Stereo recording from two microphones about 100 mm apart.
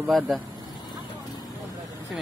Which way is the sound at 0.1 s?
Centre (ahead or behind).